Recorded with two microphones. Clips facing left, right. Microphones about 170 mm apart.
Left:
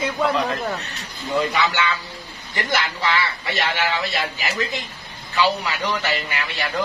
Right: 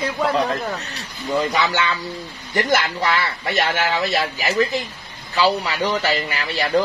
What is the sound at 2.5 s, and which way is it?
Speech, 45° right (ahead or behind).